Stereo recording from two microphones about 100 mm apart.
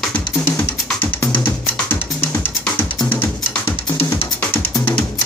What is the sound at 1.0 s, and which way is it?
Drum, 20° left (ahead or behind).